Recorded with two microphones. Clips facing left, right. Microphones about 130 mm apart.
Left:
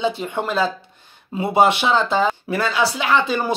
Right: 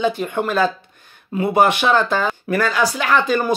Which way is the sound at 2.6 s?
45° right (ahead or behind).